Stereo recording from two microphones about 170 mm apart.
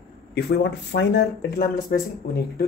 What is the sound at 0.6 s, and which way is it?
Speech, 85° left.